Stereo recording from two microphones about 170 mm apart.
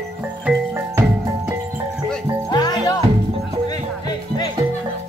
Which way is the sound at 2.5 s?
25° left (ahead or behind).